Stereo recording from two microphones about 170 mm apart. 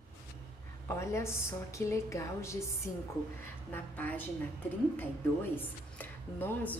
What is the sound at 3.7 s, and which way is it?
Speech, 10° left (ahead or behind).